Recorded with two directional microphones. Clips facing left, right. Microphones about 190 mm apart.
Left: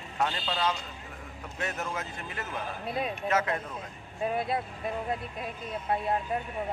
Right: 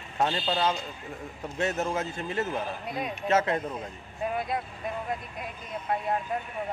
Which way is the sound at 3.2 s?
25° right (ahead or behind).